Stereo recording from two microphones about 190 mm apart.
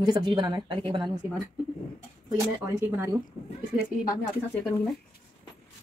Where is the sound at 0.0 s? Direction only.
20° right (ahead or behind).